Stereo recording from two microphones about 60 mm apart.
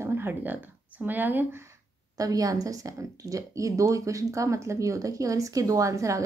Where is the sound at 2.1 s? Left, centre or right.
Right.